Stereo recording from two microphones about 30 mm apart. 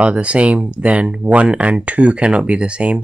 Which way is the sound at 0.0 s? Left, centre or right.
Right.